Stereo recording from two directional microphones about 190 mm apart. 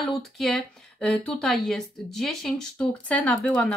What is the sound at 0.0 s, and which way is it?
Speech, centre (ahead or behind).